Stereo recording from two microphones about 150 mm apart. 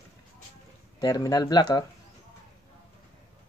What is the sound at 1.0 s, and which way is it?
Speech, 25° left (ahead or behind).